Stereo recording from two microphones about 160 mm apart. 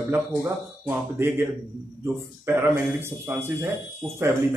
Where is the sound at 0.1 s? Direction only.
15° right (ahead or behind).